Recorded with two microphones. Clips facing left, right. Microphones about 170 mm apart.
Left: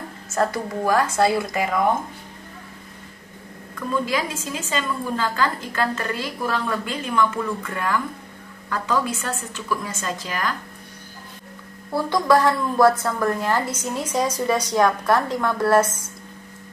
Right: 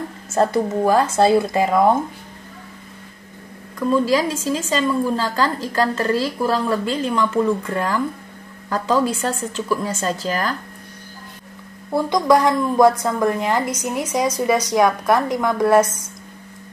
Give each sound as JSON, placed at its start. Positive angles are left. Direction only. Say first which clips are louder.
{"t": 0.3, "sound": "speech", "louder": "right 5 dB", "side_deg": -25}
{"t": 4.0, "sound": "a woman's voice", "louder": "right 7 dB", "side_deg": -35}
{"t": 11.9, "sound": "a woman's voice", "louder": "right 3 dB", "side_deg": -15}